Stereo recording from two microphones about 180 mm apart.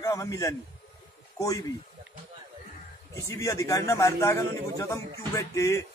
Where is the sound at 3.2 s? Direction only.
15° left (ahead or behind).